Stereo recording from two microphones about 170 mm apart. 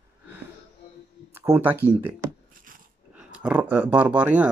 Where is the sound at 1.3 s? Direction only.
10° right (ahead or behind).